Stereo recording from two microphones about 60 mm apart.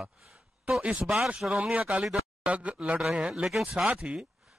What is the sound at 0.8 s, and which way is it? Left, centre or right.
Speech, centre.